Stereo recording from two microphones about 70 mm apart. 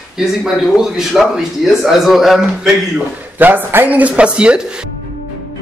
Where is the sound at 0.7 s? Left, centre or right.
Centre.